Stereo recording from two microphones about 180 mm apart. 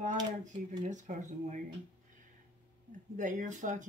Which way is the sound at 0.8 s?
45° right (ahead or behind).